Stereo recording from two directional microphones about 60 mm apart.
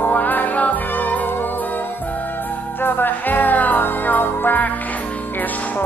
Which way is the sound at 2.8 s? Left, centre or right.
Left.